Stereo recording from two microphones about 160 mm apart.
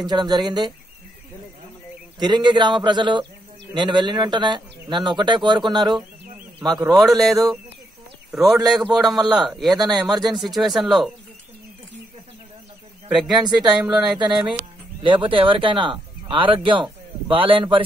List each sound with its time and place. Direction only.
0.0 s speech: 25° right (ahead or behind)
2.1 s speech: 25° right (ahead or behind)
7.0 s a man's voice: centre (ahead or behind)
13.1 s speech: centre (ahead or behind)
15.0 s speech: 30° right (ahead or behind)